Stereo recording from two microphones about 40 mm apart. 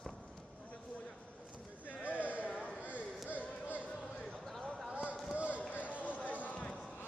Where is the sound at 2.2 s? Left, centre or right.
Right.